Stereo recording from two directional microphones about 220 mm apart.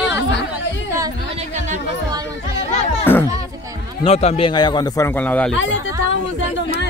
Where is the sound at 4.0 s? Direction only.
30° left (ahead or behind); by 5.5 s 5° left (ahead or behind).